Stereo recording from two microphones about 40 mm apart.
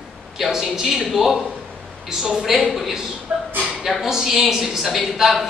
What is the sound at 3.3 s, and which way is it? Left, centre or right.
A woman's voice, centre.